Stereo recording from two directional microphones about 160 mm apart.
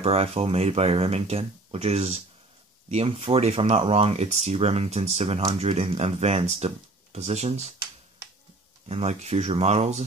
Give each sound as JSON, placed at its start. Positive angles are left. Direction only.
{"t": 0.0, "sound": "speech", "side_deg": -40}
{"t": 8.8, "sound": "speech", "side_deg": -40}